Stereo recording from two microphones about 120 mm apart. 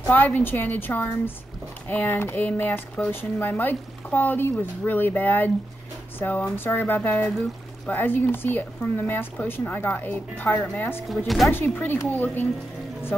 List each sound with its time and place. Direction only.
0.0 s speech: 15° left (ahead or behind)
11.2 s speech: centre (ahead or behind)
11.5 s speech: 15° left (ahead or behind)